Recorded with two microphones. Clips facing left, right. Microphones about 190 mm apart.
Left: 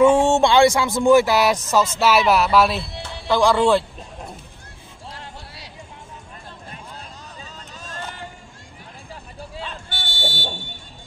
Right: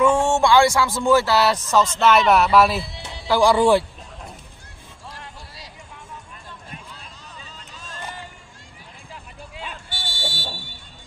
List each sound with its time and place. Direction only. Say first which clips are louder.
0.0 s speech: left 3 dB; 25° left (ahead or behind); by 3.8 s 10° right (ahead or behind)
5.1 s music: left 3 dB; 65° left (ahead or behind)
7.4 s vehicle: left 3 dB; 45° left (ahead or behind)
9.8 s buzzer: left 2 dB; 60° left (ahead or behind)
10.1 s a sound: left 4 dB; 25° left (ahead or behind)